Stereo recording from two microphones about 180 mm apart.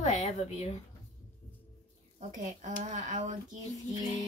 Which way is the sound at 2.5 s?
40° right (ahead or behind).